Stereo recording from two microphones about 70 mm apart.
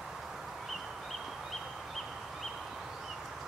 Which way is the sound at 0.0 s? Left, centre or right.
Centre.